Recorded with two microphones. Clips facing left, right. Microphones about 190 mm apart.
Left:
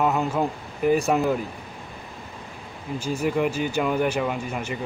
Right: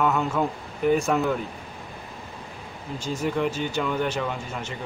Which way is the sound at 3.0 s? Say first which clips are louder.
Left 2 dB; 10° left (ahead or behind).